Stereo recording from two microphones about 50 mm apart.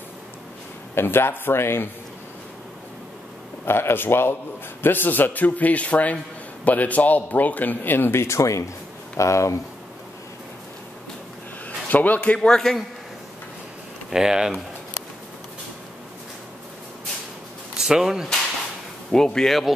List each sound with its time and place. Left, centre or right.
0.9 s speech: left
3.6 s a man's voice: left
11.9 s a man's voice: left
12.4 s speech: centre
14.1 s speech: centre
17.7 s speech: centre
19.1 s speech: centre